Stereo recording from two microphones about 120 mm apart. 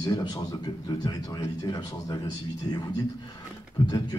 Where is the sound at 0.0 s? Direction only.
35° left (ahead or behind).